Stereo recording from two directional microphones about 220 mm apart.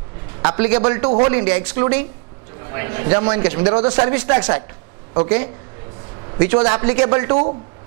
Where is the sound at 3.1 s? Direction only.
20° right (ahead or behind).